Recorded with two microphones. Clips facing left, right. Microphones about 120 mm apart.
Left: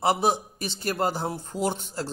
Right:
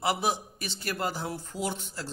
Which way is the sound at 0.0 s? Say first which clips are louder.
Left 5 dB; 30° left (ahead or behind).